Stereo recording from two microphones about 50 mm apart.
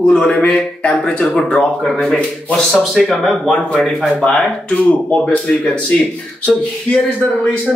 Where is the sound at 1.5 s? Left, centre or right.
Left.